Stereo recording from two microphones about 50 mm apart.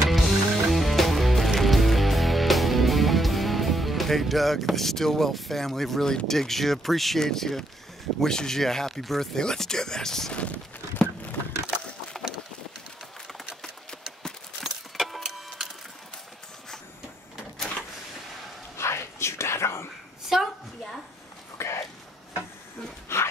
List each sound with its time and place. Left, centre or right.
0.1 s music: centre
6.2 s speech: centre
10.3 s a sound: left
12.1 s boat: centre
14.6 s keys jangling: centre
18.8 s whispering: left
20.3 s a sound: centre
21.5 s a sound: left
23.1 s dog: left